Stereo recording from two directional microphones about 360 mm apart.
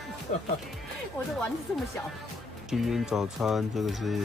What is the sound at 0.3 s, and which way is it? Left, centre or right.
Speech, left.